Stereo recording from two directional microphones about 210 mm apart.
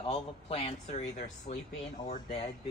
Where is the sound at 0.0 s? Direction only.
25° left (ahead or behind).